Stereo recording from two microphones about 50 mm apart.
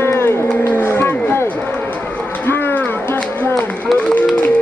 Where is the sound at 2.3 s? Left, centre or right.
Left.